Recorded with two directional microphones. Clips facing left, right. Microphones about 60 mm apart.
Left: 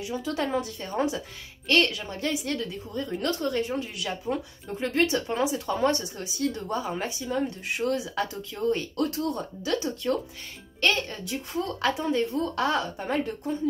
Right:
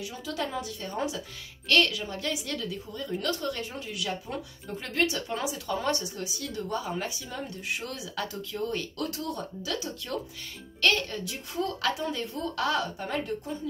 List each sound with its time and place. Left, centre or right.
0.1 s a woman's voice: left